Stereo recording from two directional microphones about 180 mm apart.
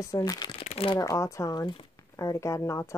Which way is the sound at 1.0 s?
15° left (ahead or behind).